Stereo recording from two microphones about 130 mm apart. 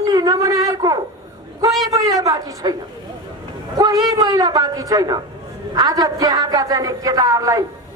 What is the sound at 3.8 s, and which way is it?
A man's voice, 25° right (ahead or behind).